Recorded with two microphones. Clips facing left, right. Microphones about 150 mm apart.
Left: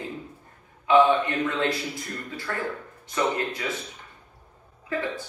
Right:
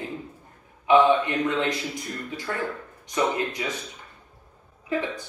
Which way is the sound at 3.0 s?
15° right (ahead or behind).